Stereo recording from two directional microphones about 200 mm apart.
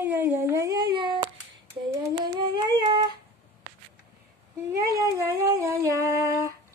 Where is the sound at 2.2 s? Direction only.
20° right (ahead or behind).